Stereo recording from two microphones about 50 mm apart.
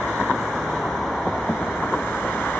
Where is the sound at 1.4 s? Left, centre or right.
Centre.